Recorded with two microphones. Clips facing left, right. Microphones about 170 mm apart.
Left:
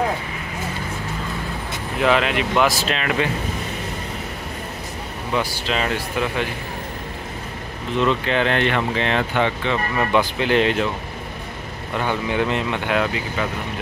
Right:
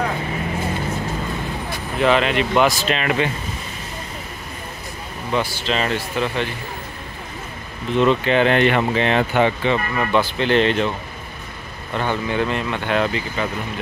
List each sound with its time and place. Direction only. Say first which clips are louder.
2.0 s speech: right 2 dB; 5° left (ahead or behind)
5.3 s speech: right 1 dB; 5° left (ahead or behind)
8.0 s speech: right 4 dB; 5° right (ahead or behind)
9.9 s speech: even; 10° left (ahead or behind)
12.0 s speech: even; 15° left (ahead or behind)
13.0 s speech: right 1 dB; centre (ahead or behind)